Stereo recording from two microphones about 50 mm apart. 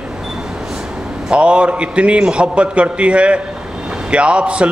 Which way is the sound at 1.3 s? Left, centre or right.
Right.